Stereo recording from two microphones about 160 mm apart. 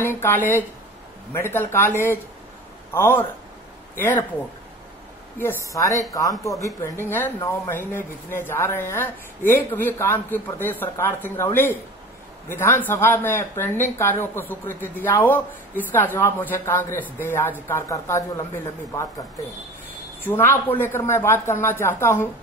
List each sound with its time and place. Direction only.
0.0 s speech: 15° left (ahead or behind)
5.4 s a woman's voice: 15° left (ahead or behind)
20.2 s speech: 15° left (ahead or behind)